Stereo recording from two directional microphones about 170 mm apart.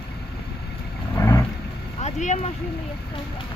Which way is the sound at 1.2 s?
15° left (ahead or behind).